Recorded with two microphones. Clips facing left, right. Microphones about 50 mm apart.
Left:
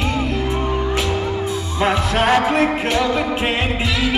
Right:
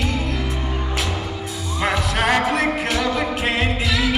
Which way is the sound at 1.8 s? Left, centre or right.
Left.